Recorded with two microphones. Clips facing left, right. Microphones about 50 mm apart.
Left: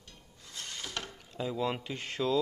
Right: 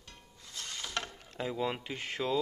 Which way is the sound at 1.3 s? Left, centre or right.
Right.